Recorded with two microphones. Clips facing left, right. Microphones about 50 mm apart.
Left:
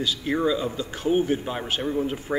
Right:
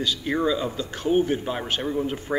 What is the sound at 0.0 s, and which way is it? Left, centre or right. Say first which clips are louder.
A man's voice: even; centre.